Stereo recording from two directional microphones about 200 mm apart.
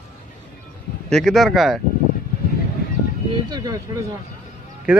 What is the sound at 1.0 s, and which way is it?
Speech, centre (ahead or behind).